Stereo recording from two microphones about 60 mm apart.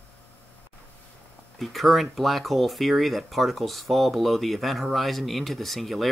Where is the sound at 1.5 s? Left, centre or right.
Centre.